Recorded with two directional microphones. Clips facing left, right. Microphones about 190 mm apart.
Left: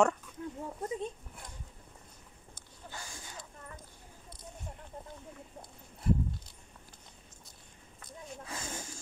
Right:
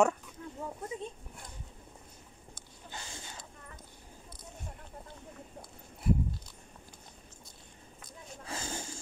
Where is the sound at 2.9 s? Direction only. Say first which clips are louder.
Right 1 dB; 25° right (ahead or behind).